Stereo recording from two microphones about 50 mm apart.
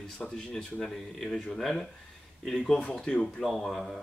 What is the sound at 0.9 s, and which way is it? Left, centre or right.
Speech, centre.